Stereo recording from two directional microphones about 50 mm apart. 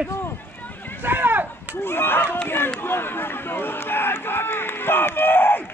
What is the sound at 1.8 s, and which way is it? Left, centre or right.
Speech, left.